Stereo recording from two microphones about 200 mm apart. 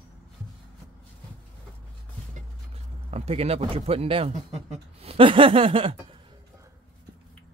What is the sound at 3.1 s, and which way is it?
Speech, 30° right (ahead or behind).